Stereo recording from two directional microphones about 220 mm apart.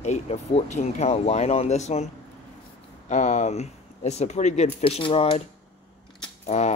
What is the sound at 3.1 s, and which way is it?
Speech, 30° left (ahead or behind).